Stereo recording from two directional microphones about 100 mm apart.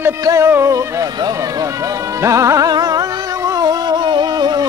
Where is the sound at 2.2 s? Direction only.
30° right (ahead or behind).